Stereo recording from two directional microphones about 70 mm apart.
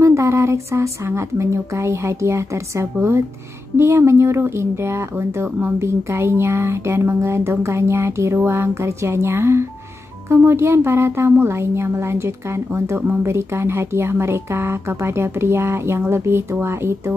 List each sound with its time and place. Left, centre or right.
0.0 s speech: right